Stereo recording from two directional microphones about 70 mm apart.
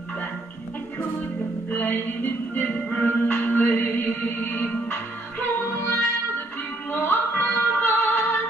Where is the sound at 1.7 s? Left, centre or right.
Left.